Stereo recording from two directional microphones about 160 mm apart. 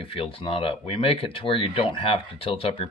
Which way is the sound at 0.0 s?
35° left (ahead or behind).